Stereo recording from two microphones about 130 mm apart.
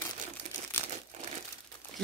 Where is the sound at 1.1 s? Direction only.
65° right (ahead or behind).